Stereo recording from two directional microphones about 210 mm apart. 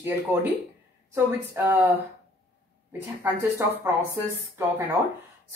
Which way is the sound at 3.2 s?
15° right (ahead or behind).